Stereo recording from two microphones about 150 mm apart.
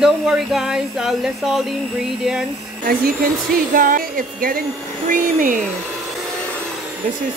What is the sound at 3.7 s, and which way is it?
Speech, 70° right (ahead or behind).